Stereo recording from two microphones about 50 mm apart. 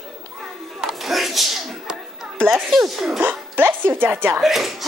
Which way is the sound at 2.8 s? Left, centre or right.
Centre.